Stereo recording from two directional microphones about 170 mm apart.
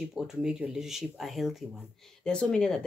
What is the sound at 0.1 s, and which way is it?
Speech, 5° right (ahead or behind).